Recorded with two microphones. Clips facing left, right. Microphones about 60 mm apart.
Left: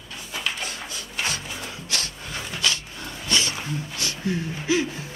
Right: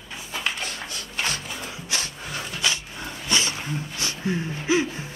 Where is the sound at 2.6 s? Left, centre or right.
Centre.